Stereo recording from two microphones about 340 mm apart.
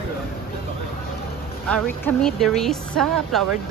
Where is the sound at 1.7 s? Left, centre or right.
Centre.